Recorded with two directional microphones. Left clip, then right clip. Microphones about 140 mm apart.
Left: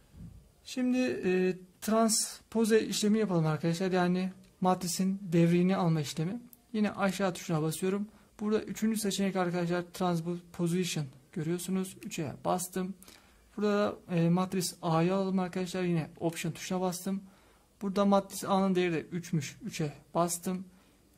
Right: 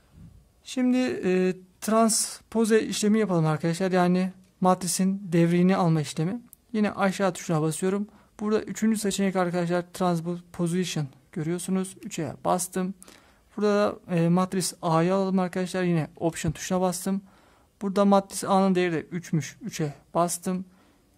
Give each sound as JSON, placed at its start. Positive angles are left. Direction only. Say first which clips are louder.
{"t": 0.7, "sound": "speech", "louder": "right 5 dB", "side_deg": -40}